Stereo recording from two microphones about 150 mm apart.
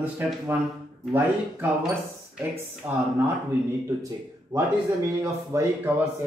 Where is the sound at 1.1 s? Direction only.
10° right (ahead or behind).